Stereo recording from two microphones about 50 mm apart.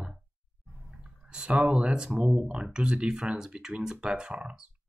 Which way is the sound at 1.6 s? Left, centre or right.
Right.